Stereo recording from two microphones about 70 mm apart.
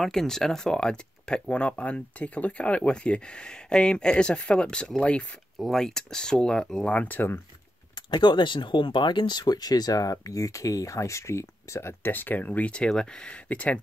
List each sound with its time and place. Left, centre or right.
0.0 s speech: centre; by 7.4 s left
8.1 s speech: left
10.1 s speech: left; by 13.7 s centre